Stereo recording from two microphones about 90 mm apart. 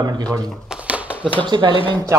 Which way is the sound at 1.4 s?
55° right (ahead or behind).